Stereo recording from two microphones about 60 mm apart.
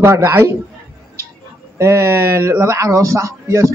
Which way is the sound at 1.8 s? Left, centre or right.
Right.